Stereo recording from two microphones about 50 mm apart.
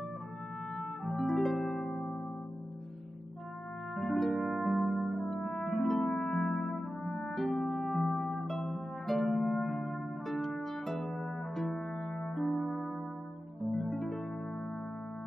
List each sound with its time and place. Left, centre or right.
0.7 s music: centre
3.9 s music: centre